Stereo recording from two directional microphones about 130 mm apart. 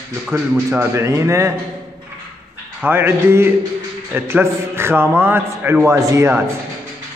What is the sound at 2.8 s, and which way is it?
A man's voice, 20° right (ahead or behind).